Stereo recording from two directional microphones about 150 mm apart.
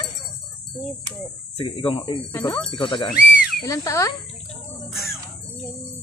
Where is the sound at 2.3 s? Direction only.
15° left (ahead or behind).